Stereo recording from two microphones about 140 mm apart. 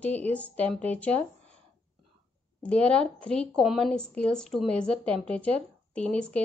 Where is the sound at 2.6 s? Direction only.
10° left (ahead or behind).